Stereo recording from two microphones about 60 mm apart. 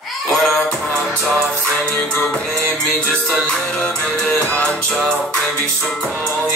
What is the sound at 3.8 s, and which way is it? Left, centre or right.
Music, centre.